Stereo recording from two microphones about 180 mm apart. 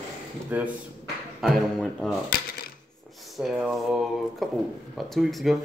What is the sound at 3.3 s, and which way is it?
A man's voice, 5° right (ahead or behind).